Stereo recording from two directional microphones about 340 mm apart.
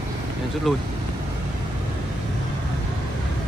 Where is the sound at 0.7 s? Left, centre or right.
Centre.